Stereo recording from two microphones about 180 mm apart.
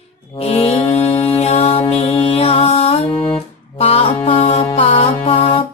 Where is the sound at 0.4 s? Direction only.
35° left (ahead or behind).